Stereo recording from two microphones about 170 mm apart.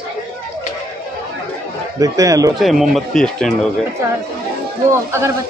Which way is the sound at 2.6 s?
Centre (ahead or behind).